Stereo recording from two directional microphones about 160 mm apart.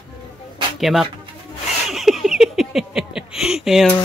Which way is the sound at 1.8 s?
Centre (ahead or behind).